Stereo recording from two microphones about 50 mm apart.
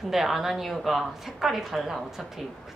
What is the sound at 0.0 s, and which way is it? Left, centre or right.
A woman's voice, centre.